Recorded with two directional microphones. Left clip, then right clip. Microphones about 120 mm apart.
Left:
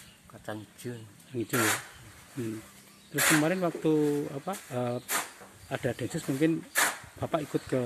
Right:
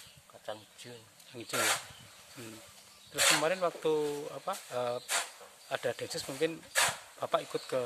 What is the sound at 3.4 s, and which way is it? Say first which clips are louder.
Speech: left 2 dB; 15° right (ahead or behind).